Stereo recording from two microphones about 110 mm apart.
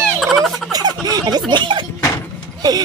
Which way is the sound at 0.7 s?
35° right (ahead or behind).